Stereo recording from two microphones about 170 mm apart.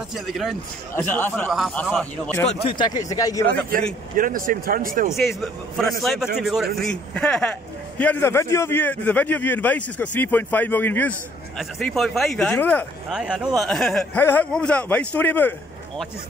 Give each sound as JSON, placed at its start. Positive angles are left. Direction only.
{"t": 0.1, "sound": "a man's voice", "side_deg": 0}
{"t": 0.9, "sound": "a man's voice", "side_deg": 10}
{"t": 1.5, "sound": "a man's voice", "side_deg": 0}
{"t": 2.7, "sound": "speech", "side_deg": 25}
{"t": 4.2, "sound": "speech", "side_deg": -55}
{"t": 5.1, "sound": "a man's voice", "side_deg": 0}
{"t": 13.1, "sound": "a man's voice", "side_deg": -5}